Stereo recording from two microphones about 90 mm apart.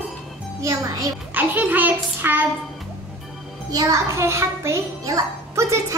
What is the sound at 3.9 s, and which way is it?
A child's voice, 30° right (ahead or behind).